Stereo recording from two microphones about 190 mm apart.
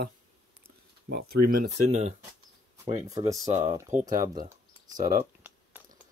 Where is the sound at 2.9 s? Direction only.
15° right (ahead or behind).